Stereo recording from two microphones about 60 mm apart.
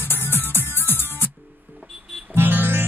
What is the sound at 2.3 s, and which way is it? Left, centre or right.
Music, right.